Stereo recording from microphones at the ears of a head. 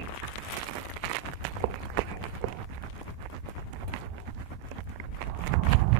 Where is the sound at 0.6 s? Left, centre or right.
Right.